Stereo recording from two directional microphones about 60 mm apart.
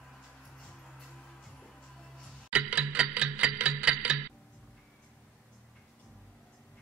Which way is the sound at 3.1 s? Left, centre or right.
Right.